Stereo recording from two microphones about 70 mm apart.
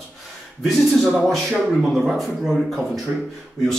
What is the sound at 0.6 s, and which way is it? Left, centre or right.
Speech, centre.